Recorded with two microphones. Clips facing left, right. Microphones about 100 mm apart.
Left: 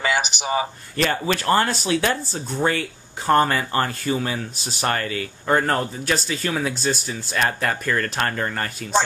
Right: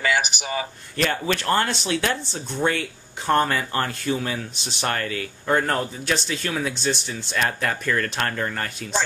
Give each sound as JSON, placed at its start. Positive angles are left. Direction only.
{"t": 0.0, "sound": "speech", "side_deg": 25}
{"t": 0.9, "sound": "speech", "side_deg": 5}